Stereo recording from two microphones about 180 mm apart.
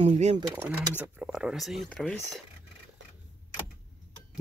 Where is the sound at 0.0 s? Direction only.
35° right (ahead or behind).